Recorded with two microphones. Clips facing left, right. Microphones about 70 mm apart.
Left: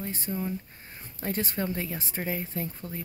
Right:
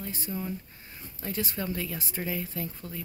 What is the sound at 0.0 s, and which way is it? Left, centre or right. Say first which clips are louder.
A woman's voice: left 3 dB; left.